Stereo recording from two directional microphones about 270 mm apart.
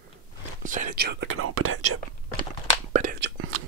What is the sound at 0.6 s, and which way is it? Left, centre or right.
Whispering, right.